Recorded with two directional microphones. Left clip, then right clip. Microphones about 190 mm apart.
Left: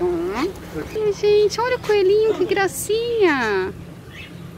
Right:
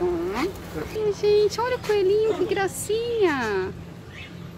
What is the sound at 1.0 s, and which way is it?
Speech, centre (ahead or behind).